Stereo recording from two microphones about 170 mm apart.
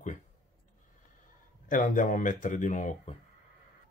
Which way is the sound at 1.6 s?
50° left (ahead or behind).